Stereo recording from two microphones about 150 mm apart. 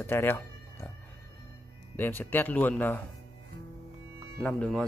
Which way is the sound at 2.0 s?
15° left (ahead or behind).